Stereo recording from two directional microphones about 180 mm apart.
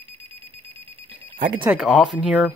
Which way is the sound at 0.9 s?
35° right (ahead or behind).